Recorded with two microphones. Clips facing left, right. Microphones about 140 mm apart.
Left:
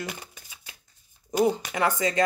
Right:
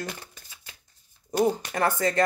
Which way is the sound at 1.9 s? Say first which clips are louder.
Right 1 dB; 15° left (ahead or behind).